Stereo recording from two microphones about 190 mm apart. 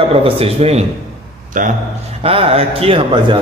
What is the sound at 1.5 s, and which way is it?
Speech, 45° right (ahead or behind).